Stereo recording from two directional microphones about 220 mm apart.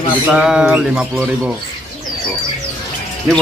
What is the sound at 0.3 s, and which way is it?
Bird, 5° right (ahead or behind).